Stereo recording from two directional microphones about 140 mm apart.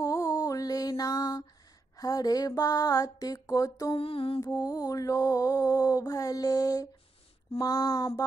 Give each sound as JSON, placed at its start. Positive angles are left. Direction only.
{"t": 0.0, "sound": "mantra", "side_deg": 25}
{"t": 3.9, "sound": "mantra", "side_deg": 40}
{"t": 4.4, "sound": "mantra", "side_deg": 25}